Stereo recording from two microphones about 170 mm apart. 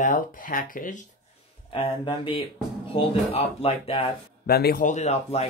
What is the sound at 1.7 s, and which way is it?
Speech, 30° left (ahead or behind).